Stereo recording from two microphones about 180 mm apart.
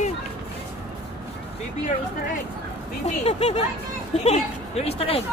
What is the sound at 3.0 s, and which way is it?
A woman's voice, 35° left (ahead or behind).